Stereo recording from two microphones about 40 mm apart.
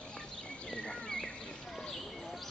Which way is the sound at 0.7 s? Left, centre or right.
Left.